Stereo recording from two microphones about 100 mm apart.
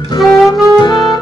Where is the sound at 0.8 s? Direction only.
45° left (ahead or behind).